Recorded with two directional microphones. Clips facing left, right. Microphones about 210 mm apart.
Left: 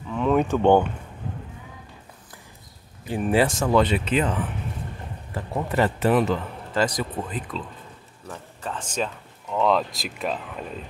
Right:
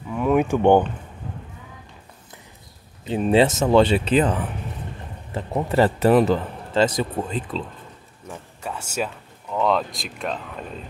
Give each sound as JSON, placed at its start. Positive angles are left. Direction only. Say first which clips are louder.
{"t": 0.1, "sound": "a sound", "louder": "right 2 dB", "side_deg": -10}
{"t": 3.1, "sound": "a man's voice", "louder": "right 4 dB", "side_deg": -25}
{"t": 8.3, "sound": "speech", "louder": "right 1 dB", "side_deg": -10}